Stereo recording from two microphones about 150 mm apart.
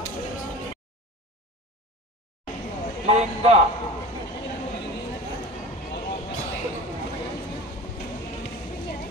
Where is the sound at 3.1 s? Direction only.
45° right (ahead or behind).